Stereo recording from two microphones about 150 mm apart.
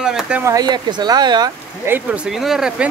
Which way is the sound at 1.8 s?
15° right (ahead or behind).